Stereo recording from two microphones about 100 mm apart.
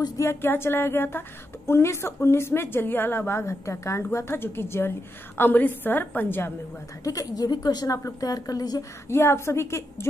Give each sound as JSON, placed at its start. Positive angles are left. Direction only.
{"t": 0.2, "sound": "a woman's voice", "side_deg": 25}
{"t": 7.1, "sound": "a woman's voice", "side_deg": 40}
{"t": 9.1, "sound": "a woman's voice", "side_deg": 25}